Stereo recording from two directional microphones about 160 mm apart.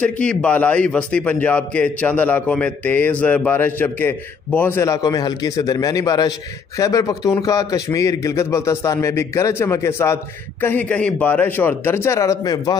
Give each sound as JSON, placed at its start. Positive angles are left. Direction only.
{"t": 0.0, "sound": "a man's voice", "side_deg": 5}